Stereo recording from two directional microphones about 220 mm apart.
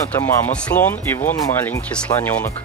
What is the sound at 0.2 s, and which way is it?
Speech, 5° left (ahead or behind).